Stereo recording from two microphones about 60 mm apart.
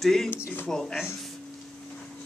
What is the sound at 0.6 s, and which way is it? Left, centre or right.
Speech, centre.